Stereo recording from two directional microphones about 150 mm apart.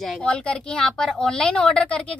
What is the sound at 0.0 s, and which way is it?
A woman's voice, 5° left (ahead or behind).